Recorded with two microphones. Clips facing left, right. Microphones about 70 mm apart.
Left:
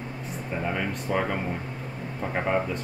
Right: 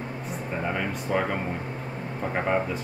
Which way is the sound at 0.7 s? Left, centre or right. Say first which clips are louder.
Even; centre.